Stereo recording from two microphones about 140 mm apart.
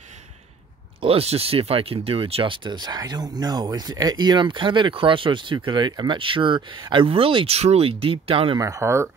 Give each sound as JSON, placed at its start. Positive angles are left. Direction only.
{"t": 1.0, "sound": "speech", "side_deg": -45}
{"t": 8.5, "sound": "speech", "side_deg": -25}